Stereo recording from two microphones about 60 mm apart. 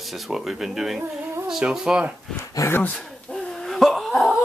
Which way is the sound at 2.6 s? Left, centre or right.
Left.